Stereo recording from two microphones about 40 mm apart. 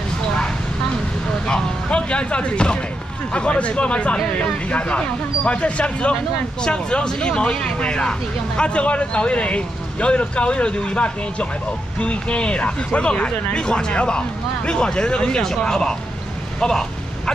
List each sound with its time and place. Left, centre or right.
1.5 s speech: left